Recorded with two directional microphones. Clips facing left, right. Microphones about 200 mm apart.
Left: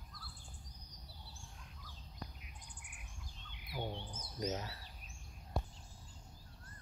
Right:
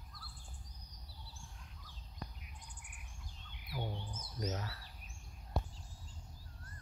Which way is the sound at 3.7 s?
20° left (ahead or behind).